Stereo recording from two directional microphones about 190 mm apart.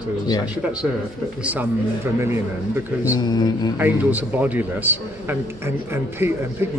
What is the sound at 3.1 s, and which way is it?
Speech, 20° left (ahead or behind).